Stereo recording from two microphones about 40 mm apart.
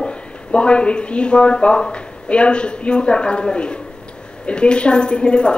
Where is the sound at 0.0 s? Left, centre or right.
Left.